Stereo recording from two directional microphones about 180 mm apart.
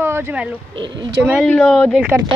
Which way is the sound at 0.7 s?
25° right (ahead or behind).